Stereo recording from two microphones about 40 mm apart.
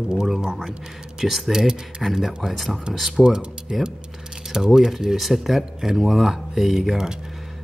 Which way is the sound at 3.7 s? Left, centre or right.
Centre.